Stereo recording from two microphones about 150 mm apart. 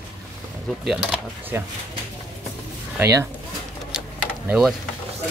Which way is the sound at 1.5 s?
15° right (ahead or behind).